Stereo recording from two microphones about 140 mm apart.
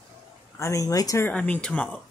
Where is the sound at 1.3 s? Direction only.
10° left (ahead or behind).